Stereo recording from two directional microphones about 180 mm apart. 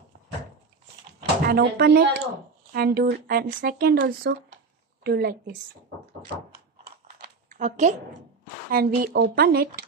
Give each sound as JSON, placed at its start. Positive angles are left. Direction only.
{"t": 1.4, "sound": "speech", "side_deg": -55}
{"t": 7.5, "sound": "a woman's voice", "side_deg": -45}
{"t": 8.7, "sound": "speech", "side_deg": -55}